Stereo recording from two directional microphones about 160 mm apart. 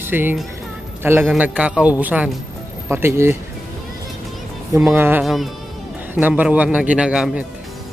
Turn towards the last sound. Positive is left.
turn(degrees=-5)  # may be behind; listen again after turning